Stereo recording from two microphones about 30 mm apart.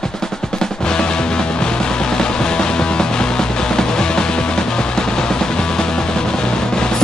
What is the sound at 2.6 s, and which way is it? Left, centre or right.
Music, left.